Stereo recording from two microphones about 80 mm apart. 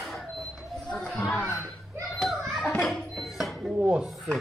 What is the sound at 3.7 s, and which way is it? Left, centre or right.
Dishes, centre.